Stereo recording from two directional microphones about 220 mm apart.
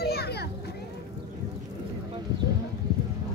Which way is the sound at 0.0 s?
45° left (ahead or behind).